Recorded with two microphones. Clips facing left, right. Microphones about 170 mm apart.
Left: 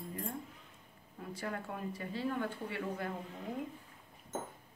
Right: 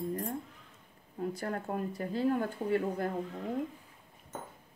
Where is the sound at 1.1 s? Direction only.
45° right (ahead or behind).